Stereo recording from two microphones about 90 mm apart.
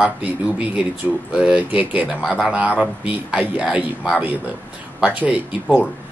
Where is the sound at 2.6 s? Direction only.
15° right (ahead or behind).